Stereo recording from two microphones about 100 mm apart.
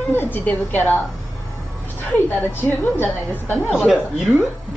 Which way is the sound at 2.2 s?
20° left (ahead or behind).